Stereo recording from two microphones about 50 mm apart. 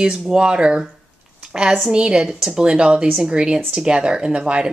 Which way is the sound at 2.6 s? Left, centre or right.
Right.